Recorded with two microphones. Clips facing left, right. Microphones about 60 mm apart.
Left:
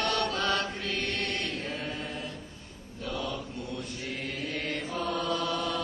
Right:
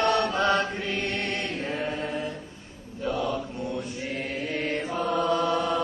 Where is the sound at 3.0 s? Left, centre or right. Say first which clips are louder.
Right 7 dB; right.